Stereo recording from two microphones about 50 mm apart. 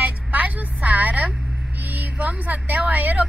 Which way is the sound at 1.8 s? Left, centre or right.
Right.